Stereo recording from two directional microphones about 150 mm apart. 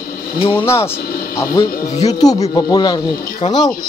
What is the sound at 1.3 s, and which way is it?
Speech, 20° left (ahead or behind).